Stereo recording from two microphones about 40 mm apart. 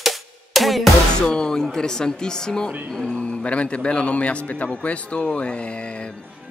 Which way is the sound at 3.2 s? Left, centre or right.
Left.